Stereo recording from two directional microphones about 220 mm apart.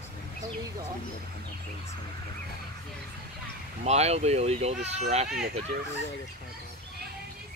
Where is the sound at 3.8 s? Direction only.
30° right (ahead or behind).